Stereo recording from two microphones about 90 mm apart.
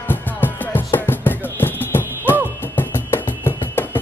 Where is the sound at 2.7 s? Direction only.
25° left (ahead or behind).